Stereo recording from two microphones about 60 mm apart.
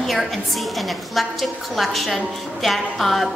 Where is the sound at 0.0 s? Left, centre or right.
Centre.